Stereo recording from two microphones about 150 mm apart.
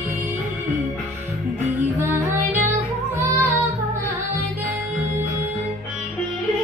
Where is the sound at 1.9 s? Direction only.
15° right (ahead or behind).